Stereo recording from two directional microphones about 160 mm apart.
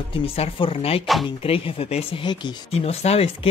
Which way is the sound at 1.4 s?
35° left (ahead or behind).